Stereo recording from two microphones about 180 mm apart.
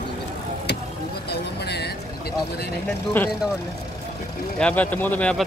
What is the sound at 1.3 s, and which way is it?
Vehicle, 65° left (ahead or behind).